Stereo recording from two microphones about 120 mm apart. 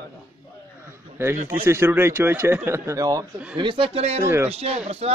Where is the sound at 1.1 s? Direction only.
20° right (ahead or behind).